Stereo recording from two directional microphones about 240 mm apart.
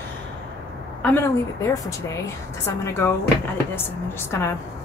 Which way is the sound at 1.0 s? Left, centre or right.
Centre.